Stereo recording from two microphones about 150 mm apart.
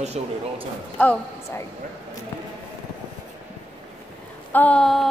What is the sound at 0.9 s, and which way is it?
Speech, 10° left (ahead or behind).